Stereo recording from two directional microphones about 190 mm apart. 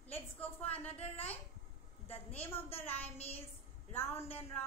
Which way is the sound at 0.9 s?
30° left (ahead or behind).